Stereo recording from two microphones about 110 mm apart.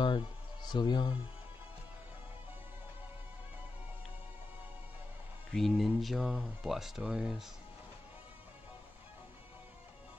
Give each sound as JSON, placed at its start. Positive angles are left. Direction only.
{"t": 0.0, "sound": "music", "side_deg": 50}
{"t": 5.5, "sound": "speech", "side_deg": 0}